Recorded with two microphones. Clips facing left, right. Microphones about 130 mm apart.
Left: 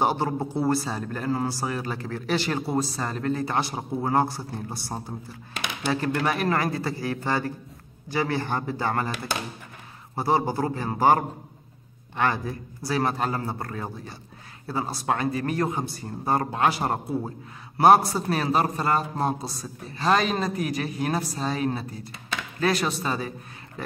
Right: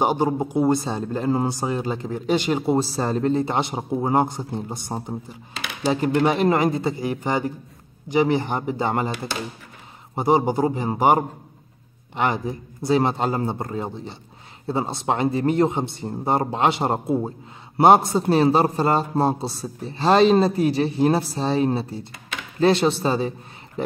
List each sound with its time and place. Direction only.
0.0 s a man's voice: 15° right (ahead or behind)